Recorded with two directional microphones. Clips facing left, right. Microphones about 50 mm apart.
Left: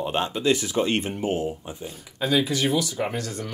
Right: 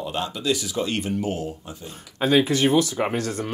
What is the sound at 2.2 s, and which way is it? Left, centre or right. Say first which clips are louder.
Speech: right 4 dB; right.